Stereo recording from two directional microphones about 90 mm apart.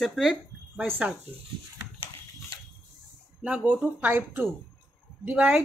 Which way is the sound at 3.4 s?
10° right (ahead or behind).